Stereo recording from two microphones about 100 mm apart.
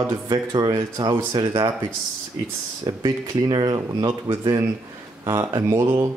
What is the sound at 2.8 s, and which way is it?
Speech, 40° right (ahead or behind).